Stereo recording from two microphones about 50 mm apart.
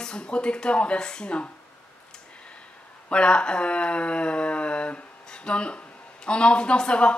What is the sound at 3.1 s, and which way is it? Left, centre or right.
A woman's voice, left.